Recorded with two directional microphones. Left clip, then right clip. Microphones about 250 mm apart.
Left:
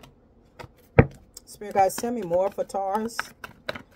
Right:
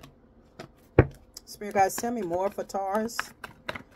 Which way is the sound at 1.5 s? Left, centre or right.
Centre.